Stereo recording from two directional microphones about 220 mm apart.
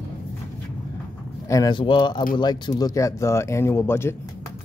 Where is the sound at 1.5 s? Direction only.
20° left (ahead or behind).